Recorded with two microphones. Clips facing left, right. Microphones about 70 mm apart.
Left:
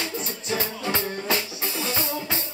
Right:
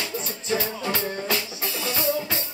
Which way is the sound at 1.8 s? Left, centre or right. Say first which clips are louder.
Right 4 dB; left.